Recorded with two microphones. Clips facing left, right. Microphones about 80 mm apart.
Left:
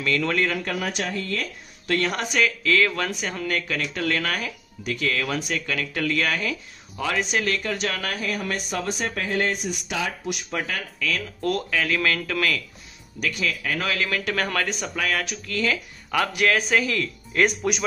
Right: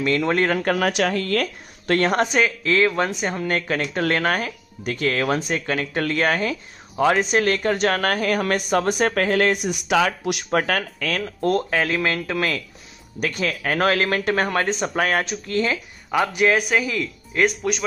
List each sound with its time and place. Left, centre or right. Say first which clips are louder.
0.3 s speech: right 5 dB; right
1.9 s speech: right 6 dB; right
15.0 s speech: right 3 dB; right; by 17.8 s centre